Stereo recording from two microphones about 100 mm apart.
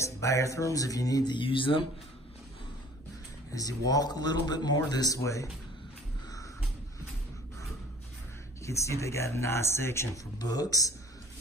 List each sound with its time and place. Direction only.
0.0 s speech: 30° left (ahead or behind)
1.3 s speech: 60° left (ahead or behind)
3.5 s speech: 35° left (ahead or behind)
8.6 s speech: 30° left (ahead or behind)
10.4 s speech: 40° left (ahead or behind)